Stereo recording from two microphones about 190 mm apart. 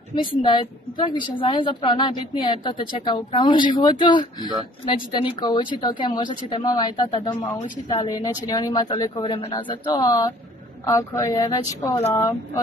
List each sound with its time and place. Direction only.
0.1 s a woman's voice: 25° left (ahead or behind)